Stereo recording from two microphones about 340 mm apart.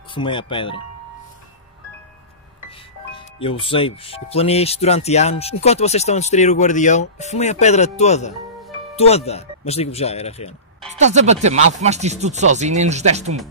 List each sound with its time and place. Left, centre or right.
0.1 s speech: centre
3.1 s speech: centre
11.1 s speech: centre